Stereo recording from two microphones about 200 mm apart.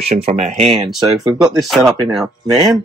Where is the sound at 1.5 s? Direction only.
Centre (ahead or behind).